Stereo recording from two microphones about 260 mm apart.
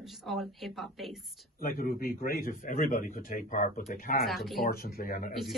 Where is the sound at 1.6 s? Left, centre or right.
Left.